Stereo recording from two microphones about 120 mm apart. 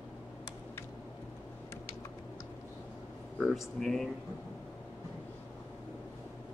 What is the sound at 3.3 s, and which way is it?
Speech, 5° left (ahead or behind).